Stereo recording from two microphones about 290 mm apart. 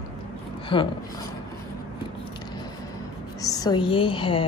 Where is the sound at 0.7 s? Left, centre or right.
Centre.